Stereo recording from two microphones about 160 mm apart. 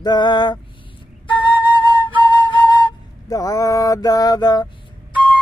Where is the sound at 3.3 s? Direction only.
20° left (ahead or behind).